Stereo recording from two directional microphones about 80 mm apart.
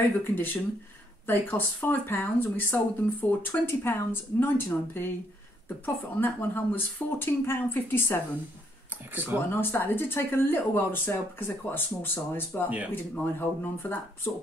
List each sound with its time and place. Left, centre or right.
0.2 s speech: left
6.1 s speech: left
9.1 s speech: right
9.5 s speech: left